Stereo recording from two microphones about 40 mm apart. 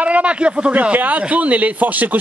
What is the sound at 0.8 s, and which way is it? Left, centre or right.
Speech, right.